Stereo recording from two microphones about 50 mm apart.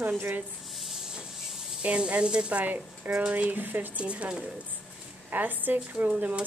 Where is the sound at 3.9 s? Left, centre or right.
Right.